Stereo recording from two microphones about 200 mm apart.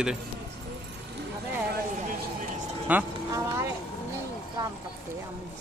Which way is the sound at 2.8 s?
10° right (ahead or behind).